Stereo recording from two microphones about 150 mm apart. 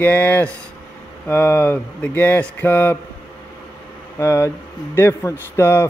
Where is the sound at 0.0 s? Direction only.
10° left (ahead or behind).